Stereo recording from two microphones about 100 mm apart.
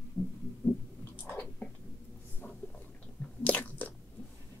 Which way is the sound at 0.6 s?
10° left (ahead or behind).